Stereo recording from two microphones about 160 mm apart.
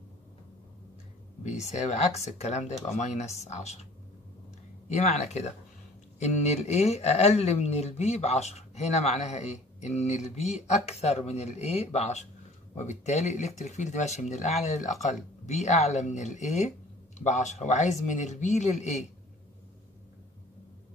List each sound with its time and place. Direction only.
1.4 s speech: 45° left (ahead or behind)
4.8 s speech: 45° left (ahead or behind)